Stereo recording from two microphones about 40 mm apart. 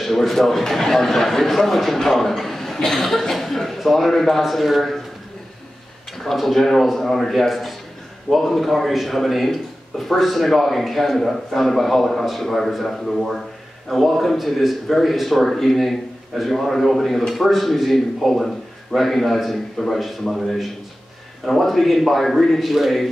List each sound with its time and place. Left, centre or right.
0.0 s a man's voice: centre
6.3 s a man's voice: centre